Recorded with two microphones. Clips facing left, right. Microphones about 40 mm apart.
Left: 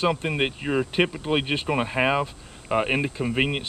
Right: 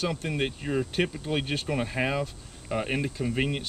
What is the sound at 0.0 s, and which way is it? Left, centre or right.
Speech, left.